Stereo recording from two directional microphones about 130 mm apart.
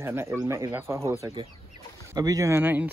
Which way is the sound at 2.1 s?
25° right (ahead or behind).